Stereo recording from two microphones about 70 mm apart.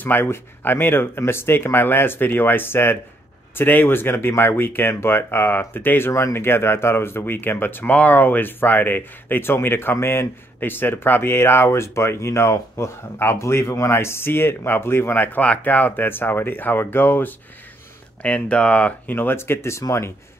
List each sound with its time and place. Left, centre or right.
0.0 s speech: left
18.2 s speech: centre; by 19.8 s left